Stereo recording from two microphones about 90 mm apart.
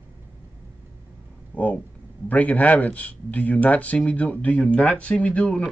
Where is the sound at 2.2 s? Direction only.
15° left (ahead or behind).